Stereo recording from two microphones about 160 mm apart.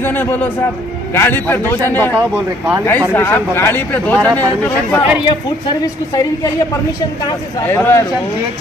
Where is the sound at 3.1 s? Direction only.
15° left (ahead or behind).